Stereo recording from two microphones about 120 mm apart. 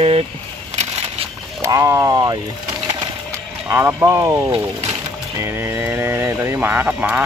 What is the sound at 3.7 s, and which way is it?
Speech, 20° right (ahead or behind).